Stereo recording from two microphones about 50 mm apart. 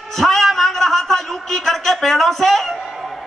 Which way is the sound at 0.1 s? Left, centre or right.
Centre.